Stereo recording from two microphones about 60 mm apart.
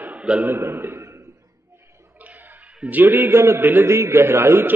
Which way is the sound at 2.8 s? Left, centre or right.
Right.